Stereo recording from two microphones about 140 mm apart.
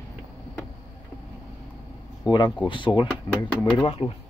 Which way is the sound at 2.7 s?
35° left (ahead or behind).